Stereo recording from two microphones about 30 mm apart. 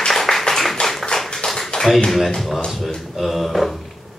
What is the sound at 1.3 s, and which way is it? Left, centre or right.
Tap, centre.